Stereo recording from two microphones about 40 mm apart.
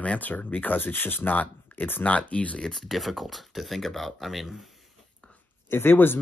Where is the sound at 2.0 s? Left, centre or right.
Left.